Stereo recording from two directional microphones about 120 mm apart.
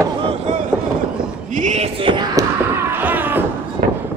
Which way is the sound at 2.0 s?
45° right (ahead or behind).